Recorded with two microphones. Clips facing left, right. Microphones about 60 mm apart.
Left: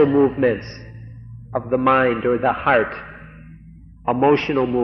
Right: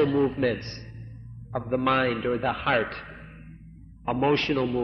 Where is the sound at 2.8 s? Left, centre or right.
Left.